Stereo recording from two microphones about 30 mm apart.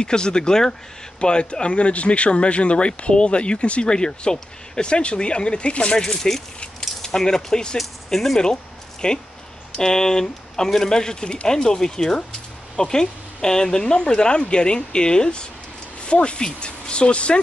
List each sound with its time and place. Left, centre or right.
0.0 s speech: left
3.9 s speech: left
5.9 s speech: left
7.7 s speech: centre
9.0 s speech: left